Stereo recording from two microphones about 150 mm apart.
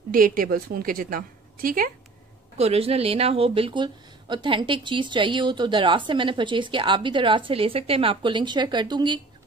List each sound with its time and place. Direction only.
0.1 s a woman's voice: 70° right (ahead or behind)
2.5 s speech: 45° right (ahead or behind)